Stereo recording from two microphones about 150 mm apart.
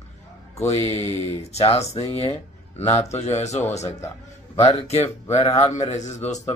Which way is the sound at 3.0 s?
45° left (ahead or behind).